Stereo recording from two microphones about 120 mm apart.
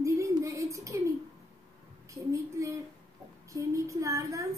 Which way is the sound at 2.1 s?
25° right (ahead or behind).